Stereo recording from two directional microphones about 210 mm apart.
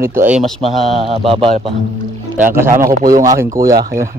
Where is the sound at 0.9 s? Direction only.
25° right (ahead or behind).